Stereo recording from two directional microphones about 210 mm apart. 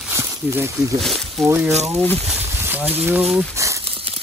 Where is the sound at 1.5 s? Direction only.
15° right (ahead or behind).